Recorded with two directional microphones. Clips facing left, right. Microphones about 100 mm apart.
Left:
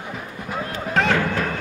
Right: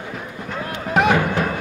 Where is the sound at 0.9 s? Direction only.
15° right (ahead or behind).